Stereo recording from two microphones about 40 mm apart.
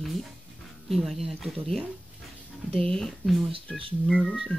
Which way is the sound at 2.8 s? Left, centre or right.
Centre.